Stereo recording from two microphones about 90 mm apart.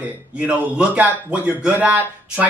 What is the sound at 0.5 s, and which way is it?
Speech, 15° right (ahead or behind).